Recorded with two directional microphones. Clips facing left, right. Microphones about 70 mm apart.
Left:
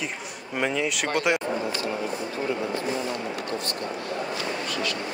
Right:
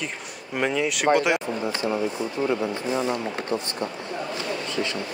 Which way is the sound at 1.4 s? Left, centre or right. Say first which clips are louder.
Right 1 dB; right.